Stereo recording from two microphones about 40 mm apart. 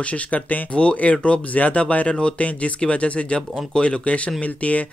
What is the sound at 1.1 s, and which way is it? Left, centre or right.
Speech, left.